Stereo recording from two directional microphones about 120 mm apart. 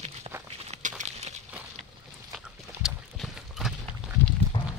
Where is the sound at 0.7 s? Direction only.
90° right.